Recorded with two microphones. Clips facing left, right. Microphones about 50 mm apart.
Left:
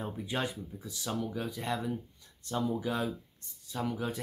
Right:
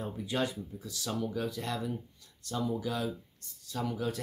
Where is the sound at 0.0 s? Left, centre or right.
Centre.